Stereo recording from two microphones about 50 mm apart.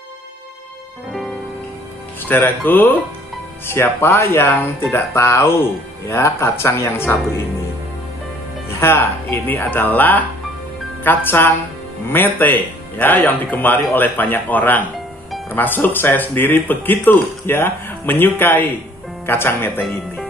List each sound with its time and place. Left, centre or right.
2.2 s speech: left
3.6 s speech: left
4.5 s speech: left
4.9 s speech: left
8.7 s speech: left
9.7 s speech: left